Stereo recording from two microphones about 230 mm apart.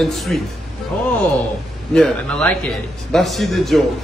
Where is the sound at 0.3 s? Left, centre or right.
Centre.